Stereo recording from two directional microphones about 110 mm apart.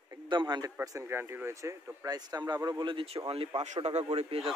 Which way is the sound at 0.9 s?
25° right (ahead or behind).